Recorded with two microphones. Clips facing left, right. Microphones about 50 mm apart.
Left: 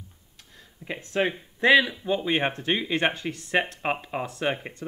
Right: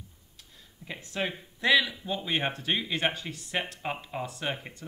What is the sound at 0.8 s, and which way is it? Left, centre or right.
Speech, left.